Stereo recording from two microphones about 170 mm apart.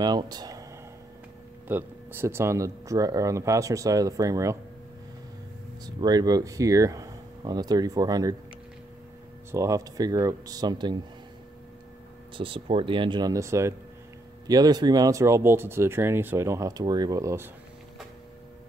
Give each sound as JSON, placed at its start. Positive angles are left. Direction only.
{"t": 0.0, "sound": "speech", "side_deg": -25}
{"t": 1.7, "sound": "speech", "side_deg": -15}
{"t": 5.9, "sound": "speech", "side_deg": -25}
{"t": 9.5, "sound": "speech", "side_deg": -20}
{"t": 12.4, "sound": "speech", "side_deg": -30}